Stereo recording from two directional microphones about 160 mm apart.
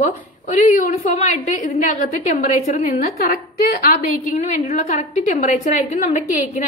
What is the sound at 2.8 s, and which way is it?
A woman's voice, 60° left (ahead or behind).